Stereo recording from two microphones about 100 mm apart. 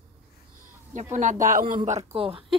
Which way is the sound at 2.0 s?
70° right (ahead or behind).